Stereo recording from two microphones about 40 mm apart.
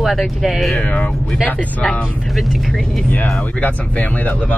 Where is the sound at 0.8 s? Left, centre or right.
Left.